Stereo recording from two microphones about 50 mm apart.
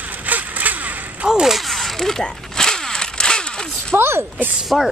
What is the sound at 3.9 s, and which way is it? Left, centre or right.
Speech, right.